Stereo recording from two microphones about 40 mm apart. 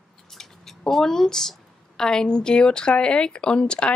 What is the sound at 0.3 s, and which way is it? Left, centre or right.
Speech, centre.